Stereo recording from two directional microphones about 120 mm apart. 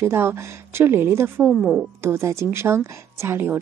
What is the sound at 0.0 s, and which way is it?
A woman's voice, 20° right (ahead or behind).